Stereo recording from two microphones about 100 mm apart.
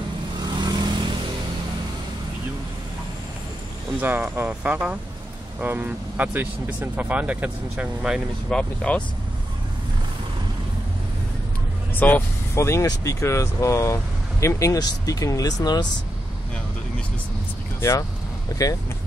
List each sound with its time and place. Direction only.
0.4 s vehicle: 45° right (ahead or behind)
4.0 s speech: 20° right (ahead or behind)
8.5 s speech: 10° left (ahead or behind)
11.9 s speech: 20° left (ahead or behind); by 15.9 s 40° left (ahead or behind)
17.7 s speech: 30° left (ahead or behind)